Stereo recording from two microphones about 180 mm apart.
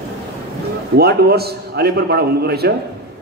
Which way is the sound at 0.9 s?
60° right (ahead or behind).